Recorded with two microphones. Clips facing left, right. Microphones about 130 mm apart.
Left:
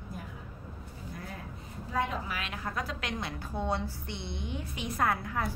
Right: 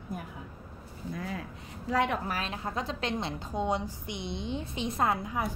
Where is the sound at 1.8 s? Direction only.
80° right.